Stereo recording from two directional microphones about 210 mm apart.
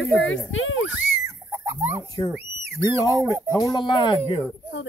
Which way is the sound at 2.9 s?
15° right (ahead or behind).